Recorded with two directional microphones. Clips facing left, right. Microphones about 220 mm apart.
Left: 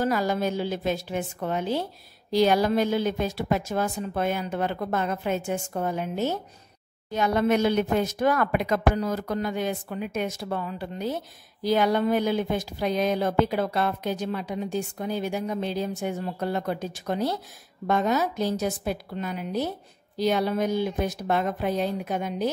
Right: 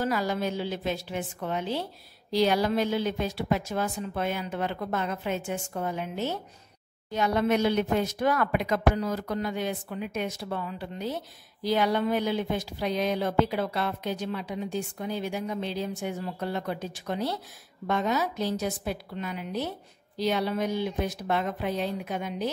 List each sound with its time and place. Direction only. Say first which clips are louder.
0.0 s speech: left 3 dB; 45° left (ahead or behind)